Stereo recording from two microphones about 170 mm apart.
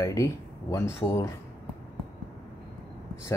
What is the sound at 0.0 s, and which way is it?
Speech, 20° left (ahead or behind).